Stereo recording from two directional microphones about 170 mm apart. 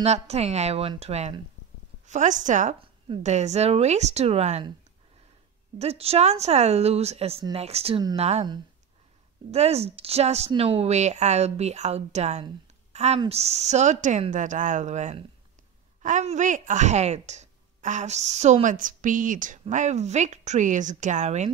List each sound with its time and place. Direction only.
0.0 s a woman's voice: 40° right (ahead or behind)
5.8 s speech: 35° right (ahead or behind)
9.5 s a woman's voice: 40° right (ahead or behind)